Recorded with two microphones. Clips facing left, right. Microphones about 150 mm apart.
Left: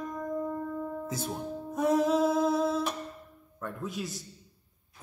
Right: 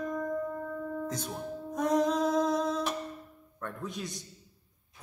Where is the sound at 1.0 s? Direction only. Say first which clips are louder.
Left 1 dB; 5° left (ahead or behind).